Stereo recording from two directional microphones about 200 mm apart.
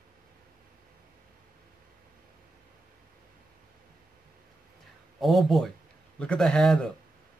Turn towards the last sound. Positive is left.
turn(degrees=0)  # may be behind; listen again after turning